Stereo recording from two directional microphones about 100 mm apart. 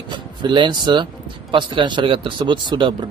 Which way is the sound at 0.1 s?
50° right (ahead or behind).